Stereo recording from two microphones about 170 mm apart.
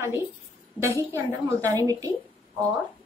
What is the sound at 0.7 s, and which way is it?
A woman's voice, 15° right (ahead or behind).